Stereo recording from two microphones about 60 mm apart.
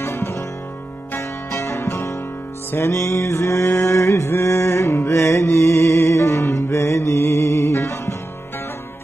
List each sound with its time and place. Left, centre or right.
0.0 s music: left
1.5 s music: left
2.7 s mantra: left